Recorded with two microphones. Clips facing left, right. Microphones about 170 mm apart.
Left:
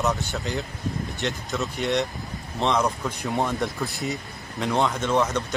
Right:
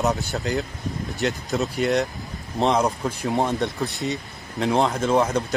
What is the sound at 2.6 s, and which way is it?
Speech, 35° right (ahead or behind).